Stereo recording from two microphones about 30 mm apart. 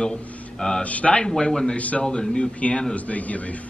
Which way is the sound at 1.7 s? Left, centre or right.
Left.